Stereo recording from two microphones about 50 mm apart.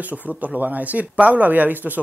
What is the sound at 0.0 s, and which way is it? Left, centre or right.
A woman's voice, right.